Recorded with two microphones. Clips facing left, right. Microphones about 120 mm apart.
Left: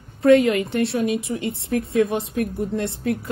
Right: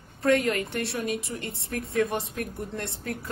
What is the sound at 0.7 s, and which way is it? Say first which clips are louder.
A woman's voice: left 8 dB; 60° left (ahead or behind).